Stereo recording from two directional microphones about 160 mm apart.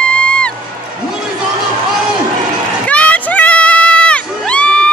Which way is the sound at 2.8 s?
10° left (ahead or behind).